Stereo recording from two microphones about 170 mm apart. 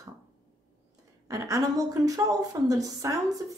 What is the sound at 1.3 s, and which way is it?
A woman's voice, 20° right (ahead or behind).